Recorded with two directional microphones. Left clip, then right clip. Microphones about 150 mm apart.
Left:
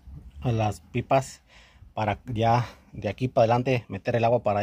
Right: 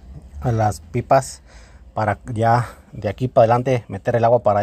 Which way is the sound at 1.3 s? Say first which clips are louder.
Right 7 dB; 10° right (ahead or behind).